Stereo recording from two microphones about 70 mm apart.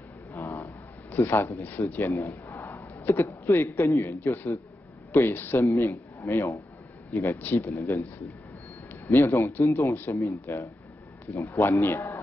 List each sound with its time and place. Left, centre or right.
0.3 s a sound: left
1.1 s a man's voice: left
1.6 s a man's voice: left
5.7 s a man's voice: left
7.3 s speech: left
7.7 s a man's voice: left
9.1 s a man's voice: left